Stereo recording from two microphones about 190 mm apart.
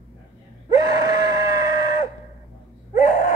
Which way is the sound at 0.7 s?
20° right (ahead or behind).